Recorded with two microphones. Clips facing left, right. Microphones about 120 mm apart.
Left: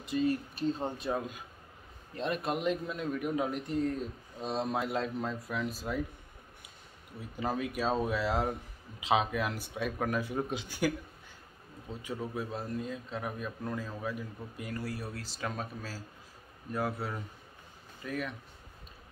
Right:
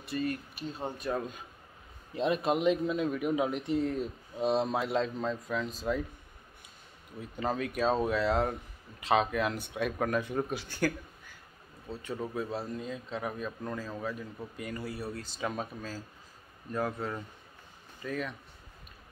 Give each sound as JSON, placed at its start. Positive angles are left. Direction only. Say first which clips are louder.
{"t": 0.0, "sound": "speech", "louder": "left 3 dB", "side_deg": 15}
{"t": 0.3, "sound": "speech", "louder": "left 6 dB", "side_deg": 25}
{"t": 1.1, "sound": "a man's voice", "louder": "right 1 dB", "side_deg": 5}
{"t": 4.6, "sound": "speech", "louder": "right 2 dB", "side_deg": 5}
{"t": 7.3, "sound": "a man's voice", "louder": "right 2 dB", "side_deg": 5}
{"t": 10.5, "sound": "speech", "louder": "right 1 dB", "side_deg": 15}
{"t": 11.9, "sound": "speech", "louder": "right 1 dB", "side_deg": 10}
{"t": 12.2, "sound": "a man's voice", "louder": "right 3 dB", "side_deg": 0}